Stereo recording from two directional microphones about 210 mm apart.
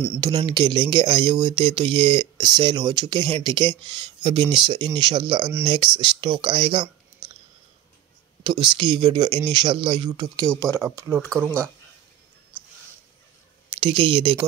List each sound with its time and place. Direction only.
0.2 s speech: 20° right (ahead or behind)
8.5 s speech: 20° right (ahead or behind)
13.7 s speech: 25° right (ahead or behind)